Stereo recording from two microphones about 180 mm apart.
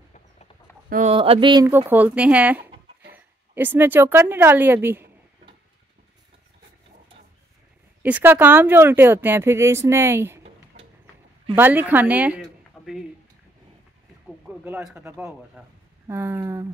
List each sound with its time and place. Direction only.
0.8 s speech: 50° right (ahead or behind)
1.1 s speech: 30° right (ahead or behind)
1.7 s a woman's voice: 10° right (ahead or behind)
8.0 s speech: 10° right (ahead or behind)
11.5 s a woman's voice: 10° right (ahead or behind)
14.5 s speech: 10° right (ahead or behind)